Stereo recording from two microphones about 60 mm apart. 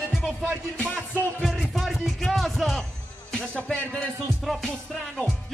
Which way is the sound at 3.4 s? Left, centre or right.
Centre.